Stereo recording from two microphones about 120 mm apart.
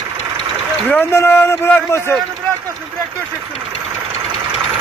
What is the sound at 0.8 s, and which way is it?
Speech, 15° left (ahead or behind).